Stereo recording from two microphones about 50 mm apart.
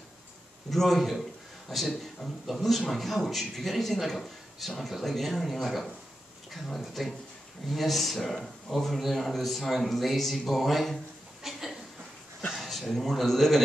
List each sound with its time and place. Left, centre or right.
0.7 s a man's voice: centre
11.4 s a sound: centre
12.5 s speech: centre